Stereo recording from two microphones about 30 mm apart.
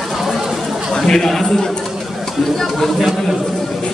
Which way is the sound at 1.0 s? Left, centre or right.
Centre.